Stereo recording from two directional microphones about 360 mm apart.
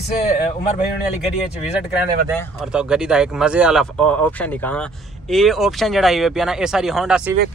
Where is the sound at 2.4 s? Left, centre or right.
Centre.